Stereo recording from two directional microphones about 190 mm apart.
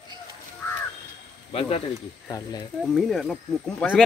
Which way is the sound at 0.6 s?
15° left (ahead or behind).